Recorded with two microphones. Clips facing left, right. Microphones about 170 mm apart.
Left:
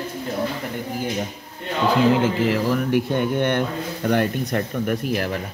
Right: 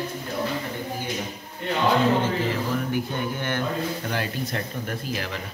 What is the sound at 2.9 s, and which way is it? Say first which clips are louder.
Speech: left 7 dB; 65° left (ahead or behind).